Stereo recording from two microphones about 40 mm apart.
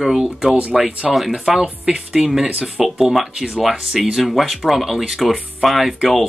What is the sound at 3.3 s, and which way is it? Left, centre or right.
Speech, right.